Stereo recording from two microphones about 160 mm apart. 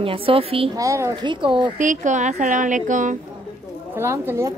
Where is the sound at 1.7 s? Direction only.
50° right (ahead or behind).